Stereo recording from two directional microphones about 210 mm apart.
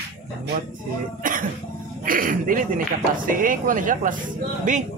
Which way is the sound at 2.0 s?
40° right (ahead or behind).